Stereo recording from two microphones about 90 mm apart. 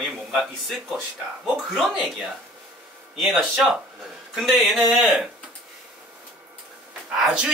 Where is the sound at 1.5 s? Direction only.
Centre (ahead or behind).